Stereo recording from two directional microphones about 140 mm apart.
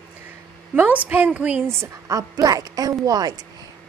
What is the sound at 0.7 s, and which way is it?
A woman's voice, 10° right (ahead or behind).